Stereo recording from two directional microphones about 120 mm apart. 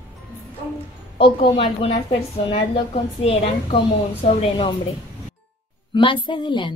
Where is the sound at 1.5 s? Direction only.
50° left (ahead or behind).